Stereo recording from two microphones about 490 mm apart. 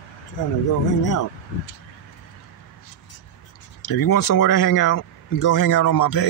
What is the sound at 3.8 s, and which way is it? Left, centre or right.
Speech, left.